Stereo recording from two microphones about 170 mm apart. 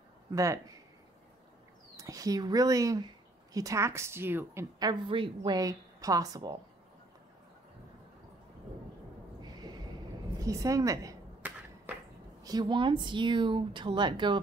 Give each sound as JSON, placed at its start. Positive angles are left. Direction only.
{"t": 0.3, "sound": "speech", "side_deg": -15}
{"t": 2.0, "sound": "a woman's voice", "side_deg": -20}
{"t": 9.4, "sound": "a sound", "side_deg": -25}
{"t": 12.4, "sound": "a woman's voice", "side_deg": -25}